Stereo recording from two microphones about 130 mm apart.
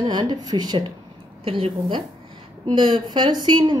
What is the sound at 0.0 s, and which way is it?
Speech, 35° right (ahead or behind).